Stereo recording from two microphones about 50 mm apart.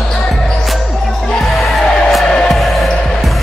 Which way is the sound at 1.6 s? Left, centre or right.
Centre.